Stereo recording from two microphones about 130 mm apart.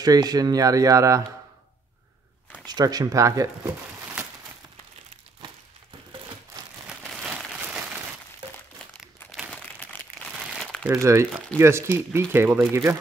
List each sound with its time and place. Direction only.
0.0 s speech: 30° right (ahead or behind)
2.6 s speech: 30° right (ahead or behind)
7.2 s a sound: 5° right (ahead or behind)
9.0 s crumpling: 5° right (ahead or behind)
11.0 s speech: 20° right (ahead or behind)